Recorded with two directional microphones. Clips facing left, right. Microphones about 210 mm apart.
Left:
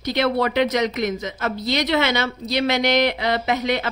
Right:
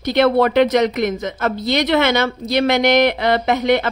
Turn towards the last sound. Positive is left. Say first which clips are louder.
# right 6 dB
turn(degrees=-55)  # may be behind; listen again after turning